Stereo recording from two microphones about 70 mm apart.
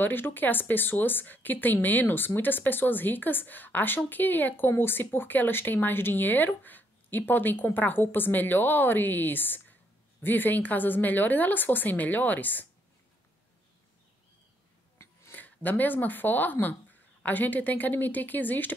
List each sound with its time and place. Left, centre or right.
0.0 s speech: left
15.3 s speech: left